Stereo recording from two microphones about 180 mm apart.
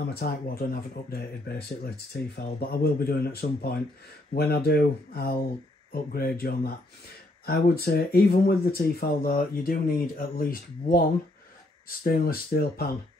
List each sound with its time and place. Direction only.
0.1 s speech: 60° left (ahead or behind)